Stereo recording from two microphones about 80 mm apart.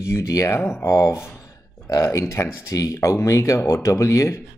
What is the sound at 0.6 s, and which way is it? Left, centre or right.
Speech, left.